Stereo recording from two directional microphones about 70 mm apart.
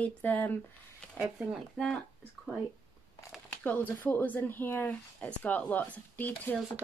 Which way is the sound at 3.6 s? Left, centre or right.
Left.